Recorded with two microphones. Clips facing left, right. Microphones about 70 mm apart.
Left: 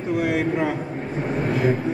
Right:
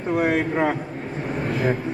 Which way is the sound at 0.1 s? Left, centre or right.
Right.